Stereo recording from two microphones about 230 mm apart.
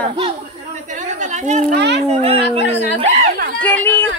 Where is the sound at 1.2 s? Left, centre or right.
Right.